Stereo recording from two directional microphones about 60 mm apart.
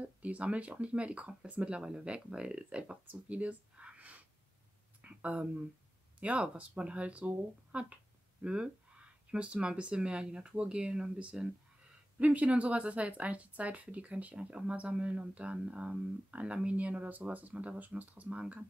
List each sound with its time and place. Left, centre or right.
0.0 s speech: right
3.1 s a sound: right
6.1 s speech: right